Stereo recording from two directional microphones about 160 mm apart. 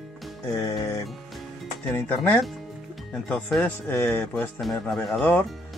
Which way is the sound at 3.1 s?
5° left (ahead or behind).